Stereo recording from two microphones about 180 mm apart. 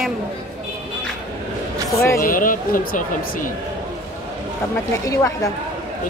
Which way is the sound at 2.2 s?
50° left (ahead or behind).